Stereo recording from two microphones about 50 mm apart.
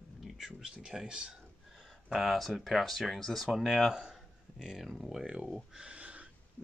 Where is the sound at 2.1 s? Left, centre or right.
Centre.